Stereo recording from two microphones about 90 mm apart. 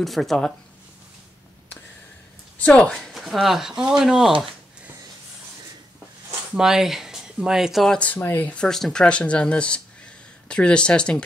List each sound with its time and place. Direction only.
0.0 s speech: centre (ahead or behind)
2.6 s speech: 10° left (ahead or behind)
6.5 s speech: 5° right (ahead or behind)
8.0 s speech: 20° left (ahead or behind)
8.6 s speech: 5° left (ahead or behind)